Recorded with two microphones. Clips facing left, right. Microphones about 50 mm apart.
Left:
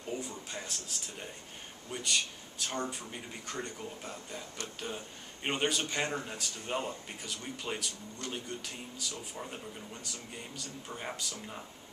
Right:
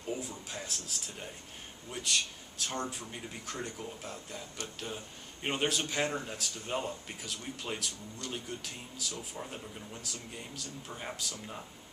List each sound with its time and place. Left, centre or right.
0.1 s speech: centre